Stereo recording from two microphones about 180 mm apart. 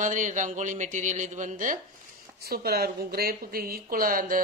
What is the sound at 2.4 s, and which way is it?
A woman's voice, 60° right (ahead or behind).